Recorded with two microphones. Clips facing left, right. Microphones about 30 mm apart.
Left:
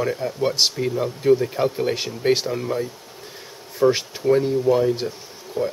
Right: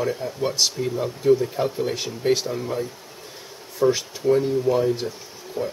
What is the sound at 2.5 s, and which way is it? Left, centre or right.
Speech, centre.